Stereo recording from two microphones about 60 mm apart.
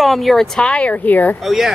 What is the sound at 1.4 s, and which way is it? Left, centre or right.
Speech, centre.